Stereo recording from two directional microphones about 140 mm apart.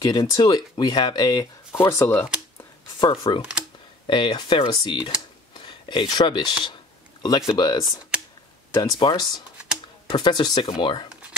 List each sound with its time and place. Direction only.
0.0 s speech: 30° left (ahead or behind)
3.0 s speech: 35° left (ahead or behind)
5.5 s a sound: 35° left (ahead or behind)
7.2 s speech: 30° left (ahead or behind)